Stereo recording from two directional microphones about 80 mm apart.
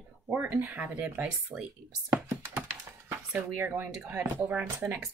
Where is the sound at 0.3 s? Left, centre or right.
Right.